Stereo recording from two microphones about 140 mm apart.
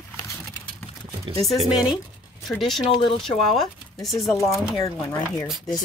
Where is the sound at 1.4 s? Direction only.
Centre (ahead or behind).